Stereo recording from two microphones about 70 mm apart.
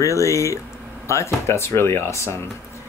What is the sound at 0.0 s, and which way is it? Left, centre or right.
Speech, left.